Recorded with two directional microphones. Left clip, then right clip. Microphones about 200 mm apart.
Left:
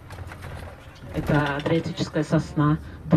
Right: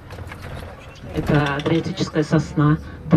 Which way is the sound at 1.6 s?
20° left (ahead or behind).